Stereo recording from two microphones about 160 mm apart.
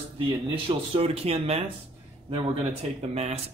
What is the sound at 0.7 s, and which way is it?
Speech, 35° right (ahead or behind).